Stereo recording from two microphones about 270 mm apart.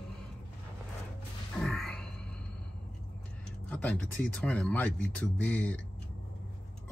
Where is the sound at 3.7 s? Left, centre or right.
Centre.